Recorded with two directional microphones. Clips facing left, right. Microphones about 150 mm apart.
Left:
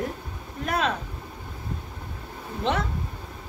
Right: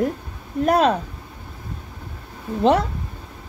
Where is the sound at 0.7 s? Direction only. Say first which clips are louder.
Right 9 dB; 40° right (ahead or behind).